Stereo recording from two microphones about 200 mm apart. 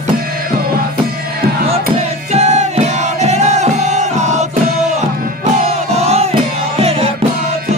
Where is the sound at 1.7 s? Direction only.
35° right (ahead or behind).